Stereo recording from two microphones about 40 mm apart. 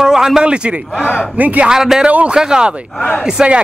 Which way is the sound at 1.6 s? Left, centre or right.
Centre.